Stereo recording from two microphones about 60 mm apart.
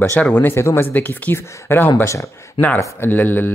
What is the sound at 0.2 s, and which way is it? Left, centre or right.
A man's voice, left.